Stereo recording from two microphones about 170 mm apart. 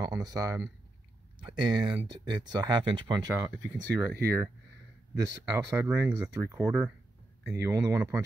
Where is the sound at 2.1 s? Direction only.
25° right (ahead or behind).